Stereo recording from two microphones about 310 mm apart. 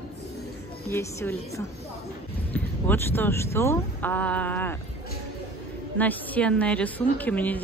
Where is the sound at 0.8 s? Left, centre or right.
Centre.